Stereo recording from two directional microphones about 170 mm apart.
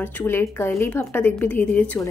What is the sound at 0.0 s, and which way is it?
A woman's voice, 10° left (ahead or behind).